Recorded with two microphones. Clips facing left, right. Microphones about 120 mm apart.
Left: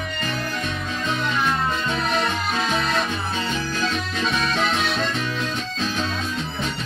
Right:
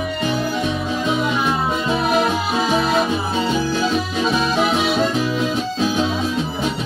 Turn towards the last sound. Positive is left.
turn(degrees=-10)  # may be behind; listen again after turning